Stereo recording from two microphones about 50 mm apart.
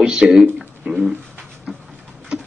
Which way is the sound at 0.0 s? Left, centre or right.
Centre.